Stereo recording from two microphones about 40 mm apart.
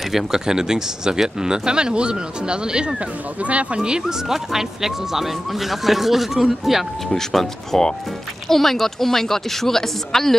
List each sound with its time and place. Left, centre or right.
0.1 s speech: centre
3.4 s speech: right
4.3 s speech: centre
7.2 s speech: centre